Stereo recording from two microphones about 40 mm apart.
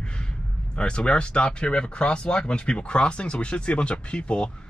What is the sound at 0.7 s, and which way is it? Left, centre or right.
Speech, left.